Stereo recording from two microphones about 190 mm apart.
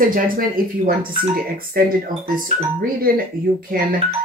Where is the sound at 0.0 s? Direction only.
50° right (ahead or behind).